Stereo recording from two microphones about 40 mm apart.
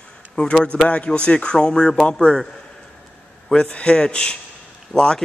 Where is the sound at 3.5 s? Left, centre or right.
Left.